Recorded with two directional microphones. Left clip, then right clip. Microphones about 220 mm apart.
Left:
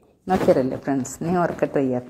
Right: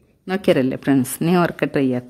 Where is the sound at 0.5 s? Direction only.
40° right (ahead or behind).